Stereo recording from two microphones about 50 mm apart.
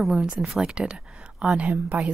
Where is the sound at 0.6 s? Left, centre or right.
Centre.